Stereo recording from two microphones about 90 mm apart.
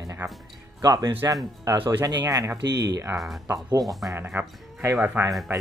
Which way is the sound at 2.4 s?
30° right (ahead or behind).